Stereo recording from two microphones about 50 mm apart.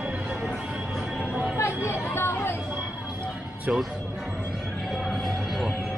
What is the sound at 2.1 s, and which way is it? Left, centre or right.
Chatter, left.